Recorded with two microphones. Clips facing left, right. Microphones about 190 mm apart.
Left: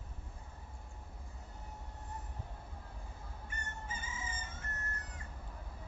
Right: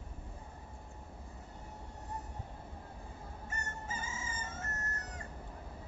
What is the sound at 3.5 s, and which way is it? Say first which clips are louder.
Chicken: right 3 dB; 45° right (ahead or behind).